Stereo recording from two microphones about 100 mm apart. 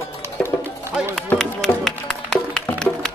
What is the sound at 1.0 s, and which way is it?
Run, 10° right (ahead or behind).